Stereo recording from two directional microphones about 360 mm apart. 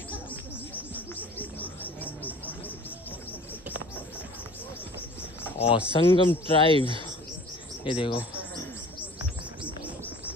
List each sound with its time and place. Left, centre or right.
0.1 s bird: centre
5.4 s a sound: centre
5.9 s speech: centre
6.7 s speech: centre
7.8 s speech: centre
9.6 s bird: centre